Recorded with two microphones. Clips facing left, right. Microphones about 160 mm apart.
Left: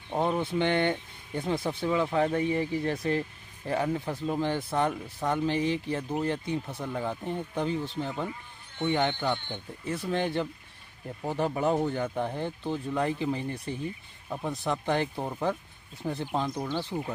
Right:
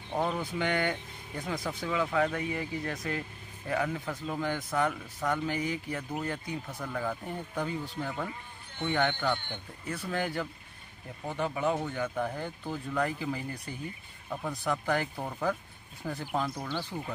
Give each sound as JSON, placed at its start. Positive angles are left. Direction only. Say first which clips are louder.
{"t": 0.1, "sound": "speech", "louder": "left 4 dB", "side_deg": 25}
{"t": 11.2, "sound": "speech", "louder": "left 3 dB", "side_deg": 35}